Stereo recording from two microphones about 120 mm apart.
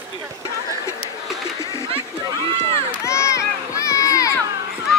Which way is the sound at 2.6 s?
25° left (ahead or behind).